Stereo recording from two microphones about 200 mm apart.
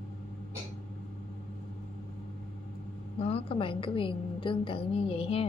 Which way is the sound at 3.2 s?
30° left (ahead or behind).